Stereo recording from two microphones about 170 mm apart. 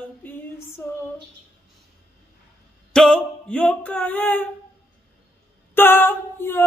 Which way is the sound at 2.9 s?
5° left (ahead or behind).